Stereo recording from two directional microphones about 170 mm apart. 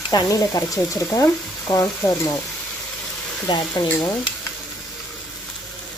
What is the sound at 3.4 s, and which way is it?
Speech, 25° left (ahead or behind).